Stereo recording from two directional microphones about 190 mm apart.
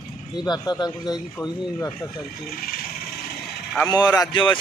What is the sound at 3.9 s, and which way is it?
Speech, 20° left (ahead or behind).